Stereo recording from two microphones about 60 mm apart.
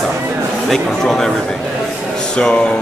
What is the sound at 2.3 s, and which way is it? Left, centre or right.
Speech, centre.